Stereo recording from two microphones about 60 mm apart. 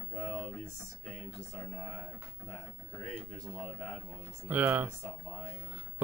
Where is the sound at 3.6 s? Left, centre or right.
Centre.